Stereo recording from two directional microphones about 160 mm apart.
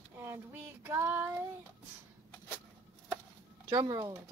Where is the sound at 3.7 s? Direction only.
20° right (ahead or behind).